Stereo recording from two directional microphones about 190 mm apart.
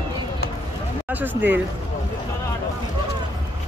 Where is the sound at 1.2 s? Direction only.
10° right (ahead or behind).